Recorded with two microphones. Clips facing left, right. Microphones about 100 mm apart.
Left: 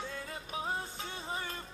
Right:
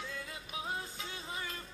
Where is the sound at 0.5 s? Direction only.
30° left (ahead or behind).